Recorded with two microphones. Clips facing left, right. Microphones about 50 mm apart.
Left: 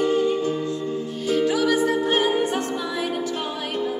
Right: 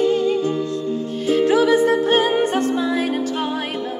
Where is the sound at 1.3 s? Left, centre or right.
Right.